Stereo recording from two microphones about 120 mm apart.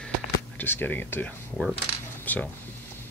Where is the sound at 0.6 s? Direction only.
15° left (ahead or behind).